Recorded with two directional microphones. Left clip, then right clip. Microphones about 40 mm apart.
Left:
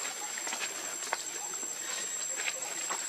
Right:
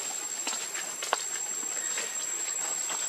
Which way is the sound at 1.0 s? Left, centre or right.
Right.